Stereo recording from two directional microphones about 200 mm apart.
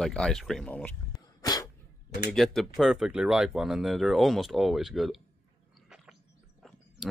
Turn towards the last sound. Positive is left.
turn(degrees=0)  # may be behind; listen again after turning